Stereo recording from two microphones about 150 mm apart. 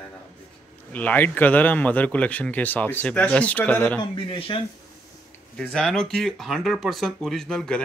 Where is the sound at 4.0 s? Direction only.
35° left (ahead or behind).